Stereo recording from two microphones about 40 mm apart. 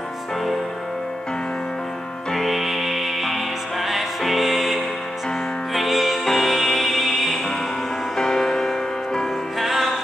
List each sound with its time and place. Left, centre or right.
2.3 s music: centre
8.2 s music: centre